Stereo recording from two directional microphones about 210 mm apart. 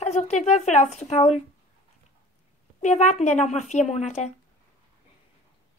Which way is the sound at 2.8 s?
35° left (ahead or behind).